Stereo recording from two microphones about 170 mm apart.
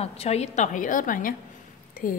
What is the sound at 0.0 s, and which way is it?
Speech, 40° left (ahead or behind).